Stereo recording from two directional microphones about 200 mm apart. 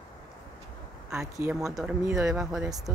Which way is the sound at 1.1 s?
10° right (ahead or behind).